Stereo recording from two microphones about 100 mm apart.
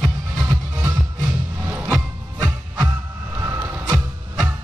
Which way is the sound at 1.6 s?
20° right (ahead or behind).